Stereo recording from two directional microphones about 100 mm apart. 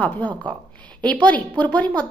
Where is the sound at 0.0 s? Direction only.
15° left (ahead or behind).